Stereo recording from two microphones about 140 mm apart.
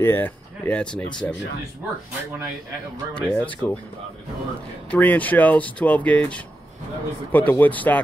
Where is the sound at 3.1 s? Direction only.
10° left (ahead or behind).